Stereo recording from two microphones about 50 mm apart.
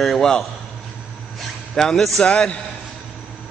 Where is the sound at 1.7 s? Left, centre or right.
Centre.